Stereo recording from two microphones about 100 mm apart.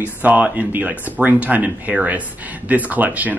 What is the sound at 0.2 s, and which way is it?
Speech, 15° right (ahead or behind).